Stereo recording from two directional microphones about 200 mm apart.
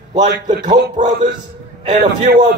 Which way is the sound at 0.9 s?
40° right (ahead or behind).